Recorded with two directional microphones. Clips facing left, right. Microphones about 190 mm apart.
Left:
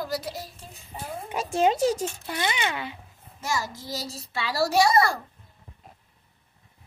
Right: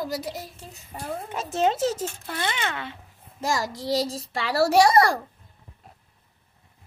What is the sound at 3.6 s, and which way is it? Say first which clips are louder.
Child singing: right 7 dB; 90° right.